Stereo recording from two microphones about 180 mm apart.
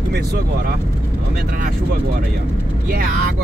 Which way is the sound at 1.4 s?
55° right (ahead or behind).